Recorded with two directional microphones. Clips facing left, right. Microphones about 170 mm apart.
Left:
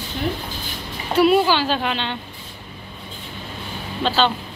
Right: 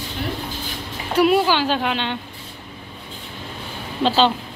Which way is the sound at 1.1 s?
10° right (ahead or behind).